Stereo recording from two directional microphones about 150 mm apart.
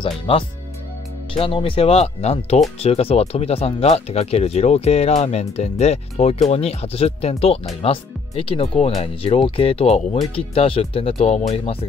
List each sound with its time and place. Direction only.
0.0 s speech: 40° left (ahead or behind)